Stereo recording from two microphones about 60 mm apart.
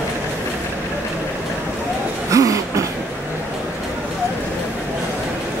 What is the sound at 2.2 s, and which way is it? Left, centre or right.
Throat clearing, right.